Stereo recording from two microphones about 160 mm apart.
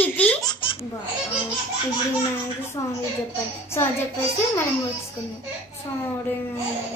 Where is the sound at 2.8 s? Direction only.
25° left (ahead or behind).